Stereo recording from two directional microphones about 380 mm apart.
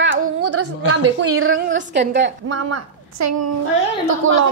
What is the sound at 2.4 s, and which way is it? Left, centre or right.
A woman's voice, right.